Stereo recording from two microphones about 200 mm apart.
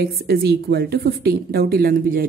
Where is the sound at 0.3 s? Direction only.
55° right (ahead or behind).